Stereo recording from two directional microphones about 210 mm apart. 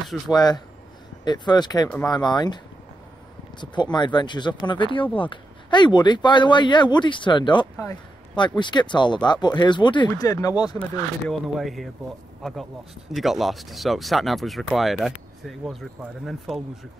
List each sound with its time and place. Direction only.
0.3 s speech: 20° left (ahead or behind)
10.8 s speech: centre (ahead or behind)